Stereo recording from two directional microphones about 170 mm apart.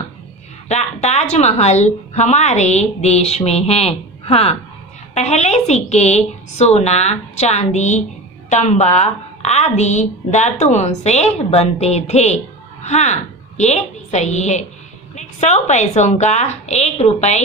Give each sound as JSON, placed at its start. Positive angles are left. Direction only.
{"t": 0.7, "sound": "a woman's voice", "side_deg": 40}